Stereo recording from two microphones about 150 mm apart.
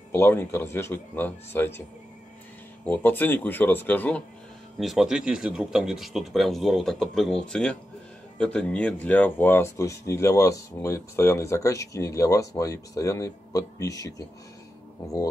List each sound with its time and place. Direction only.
0.1 s speech: 15° left (ahead or behind)
2.8 s speech: 10° left (ahead or behind)
4.7 s speech: centre (ahead or behind); by 14.2 s 25° left (ahead or behind)